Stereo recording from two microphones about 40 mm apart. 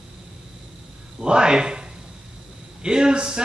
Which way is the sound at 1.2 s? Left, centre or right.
Right.